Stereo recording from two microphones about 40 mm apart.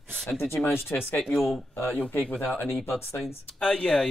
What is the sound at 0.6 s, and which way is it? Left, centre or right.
Speech, left.